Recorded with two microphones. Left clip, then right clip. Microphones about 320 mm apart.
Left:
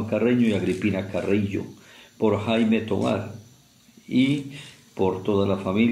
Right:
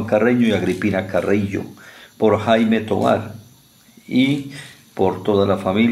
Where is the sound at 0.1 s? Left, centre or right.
Right.